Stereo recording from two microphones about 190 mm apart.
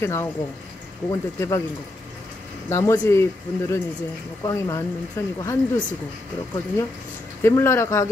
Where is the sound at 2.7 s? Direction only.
15° left (ahead or behind).